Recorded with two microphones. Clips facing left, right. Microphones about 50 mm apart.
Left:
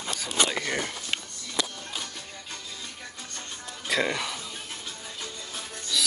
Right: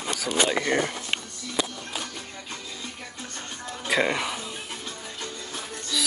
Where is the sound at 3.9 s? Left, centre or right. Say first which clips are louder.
Right 3 dB; right.